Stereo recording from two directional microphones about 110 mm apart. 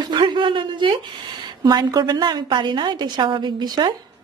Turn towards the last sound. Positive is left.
turn(degrees=-40)  # may be behind; listen again after turning